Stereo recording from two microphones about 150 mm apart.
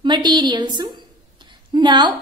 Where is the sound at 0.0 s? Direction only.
30° right (ahead or behind).